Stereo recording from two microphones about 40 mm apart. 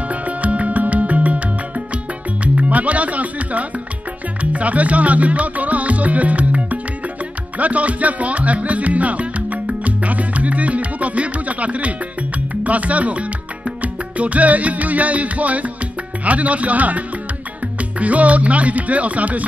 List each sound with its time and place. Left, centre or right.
0.1 s music: right
2.4 s music: right